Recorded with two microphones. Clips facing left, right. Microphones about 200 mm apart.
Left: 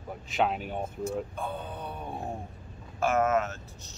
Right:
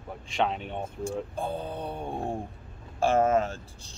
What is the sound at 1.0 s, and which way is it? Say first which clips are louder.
Speech: right 3 dB; 30° right (ahead or behind).